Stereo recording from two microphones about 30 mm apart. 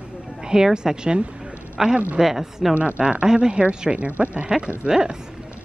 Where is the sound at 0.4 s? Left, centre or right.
Right.